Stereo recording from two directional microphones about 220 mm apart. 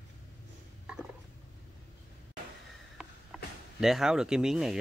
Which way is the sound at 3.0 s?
5° right (ahead or behind).